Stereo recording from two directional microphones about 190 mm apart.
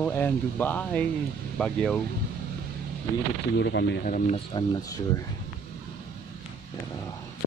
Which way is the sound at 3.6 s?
65° left (ahead or behind).